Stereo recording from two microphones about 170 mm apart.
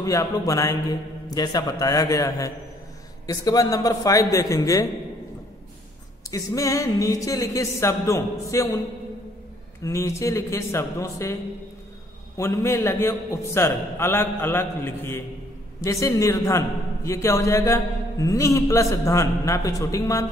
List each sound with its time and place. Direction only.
0.0 s a man's voice: 20° left (ahead or behind)
6.3 s a man's voice: 20° left (ahead or behind)
9.8 s a man's voice: 15° left (ahead or behind)
12.4 s a man's voice: 15° left (ahead or behind)